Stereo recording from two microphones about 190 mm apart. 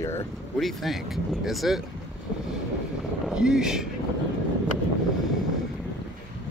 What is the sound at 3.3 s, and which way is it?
Speech, 5° right (ahead or behind).